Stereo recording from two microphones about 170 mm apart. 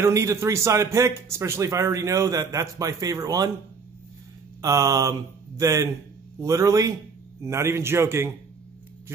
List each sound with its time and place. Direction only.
0.0 s speech: 15° right (ahead or behind)
4.6 s speech: 20° right (ahead or behind)